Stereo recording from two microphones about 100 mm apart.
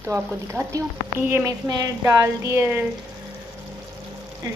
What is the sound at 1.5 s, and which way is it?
A woman's voice, 40° right (ahead or behind).